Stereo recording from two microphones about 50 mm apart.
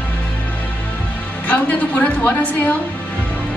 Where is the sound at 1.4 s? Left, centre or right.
Left.